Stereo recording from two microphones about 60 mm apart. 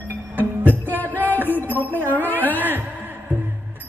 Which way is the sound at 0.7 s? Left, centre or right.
Left.